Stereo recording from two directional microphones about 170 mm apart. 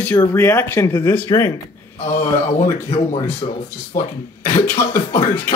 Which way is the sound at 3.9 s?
50° left (ahead or behind).